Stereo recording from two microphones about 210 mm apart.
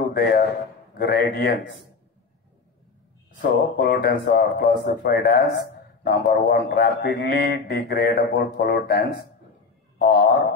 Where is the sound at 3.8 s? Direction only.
45° left (ahead or behind).